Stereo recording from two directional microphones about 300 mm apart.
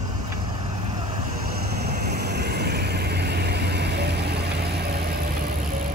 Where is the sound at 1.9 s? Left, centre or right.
Right.